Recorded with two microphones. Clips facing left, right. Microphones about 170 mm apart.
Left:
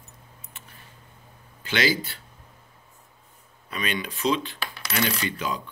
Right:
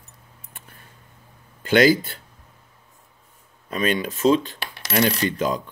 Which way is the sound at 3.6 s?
45° right (ahead or behind).